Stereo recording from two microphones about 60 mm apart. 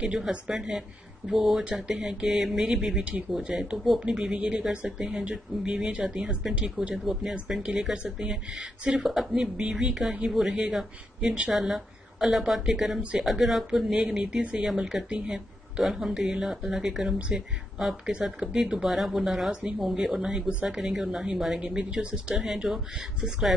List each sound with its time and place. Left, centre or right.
0.0 s a woman's voice: centre
4.0 s a woman's voice: centre
15.0 s speech: centre
15.8 s a woman's voice: centre